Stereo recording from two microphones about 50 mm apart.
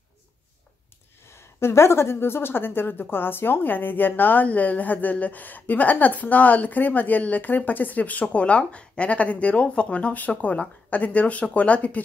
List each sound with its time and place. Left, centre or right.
1.3 s a woman's voice: left